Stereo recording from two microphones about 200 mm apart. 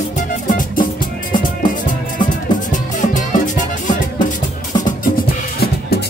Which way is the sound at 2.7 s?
40° left (ahead or behind).